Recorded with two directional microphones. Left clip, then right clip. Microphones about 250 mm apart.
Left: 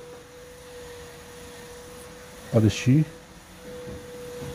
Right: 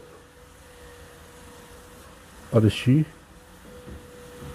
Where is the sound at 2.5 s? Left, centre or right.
Centre.